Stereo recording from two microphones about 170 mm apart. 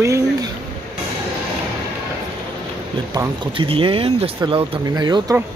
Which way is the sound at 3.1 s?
25° right (ahead or behind).